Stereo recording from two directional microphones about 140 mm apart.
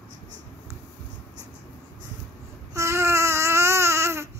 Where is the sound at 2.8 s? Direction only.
20° right (ahead or behind).